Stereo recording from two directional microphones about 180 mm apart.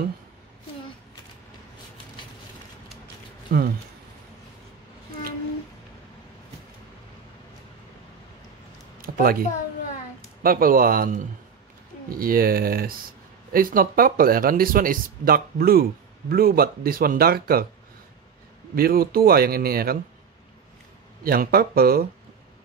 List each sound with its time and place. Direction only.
3.5 s speech: 50° right (ahead or behind)
9.0 s a woman's voice: 55° right (ahead or behind)
18.8 s speech: 55° right (ahead or behind)
21.2 s speech: 55° right (ahead or behind)